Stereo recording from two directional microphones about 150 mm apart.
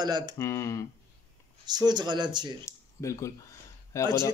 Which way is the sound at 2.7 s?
20° left (ahead or behind).